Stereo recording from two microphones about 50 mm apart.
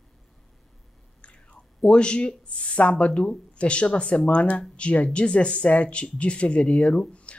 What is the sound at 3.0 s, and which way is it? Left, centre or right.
Speech, left.